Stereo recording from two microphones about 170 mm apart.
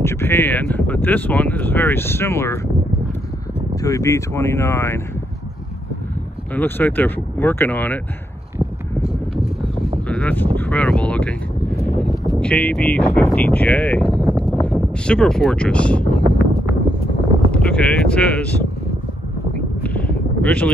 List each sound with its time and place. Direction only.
0.0 s speech: 15° left (ahead or behind)
3.7 s speech: 20° left (ahead or behind)
6.5 s speech: 10° left (ahead or behind)
9.0 s a sound: 5° right (ahead or behind)
10.0 s speech: 10° left (ahead or behind)
17.5 s speech: 5° left (ahead or behind)
19.5 s a sound: 10° left (ahead or behind)